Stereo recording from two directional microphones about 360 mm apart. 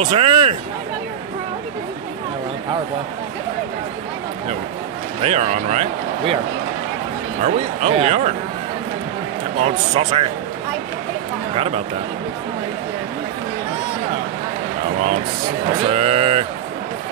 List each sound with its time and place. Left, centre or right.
0.0 s speech: centre
5.2 s speech: centre
7.4 s speech: centre
9.6 s speech: centre
11.5 s speech: centre
15.9 s speech: centre